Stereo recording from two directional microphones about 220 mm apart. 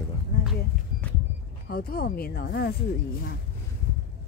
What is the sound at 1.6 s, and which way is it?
Speech, 45° left (ahead or behind).